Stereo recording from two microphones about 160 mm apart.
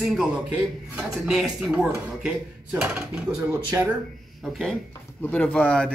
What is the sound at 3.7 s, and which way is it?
Speech, 15° right (ahead or behind).